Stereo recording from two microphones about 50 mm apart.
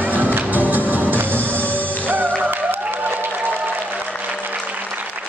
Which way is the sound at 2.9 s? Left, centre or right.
Right.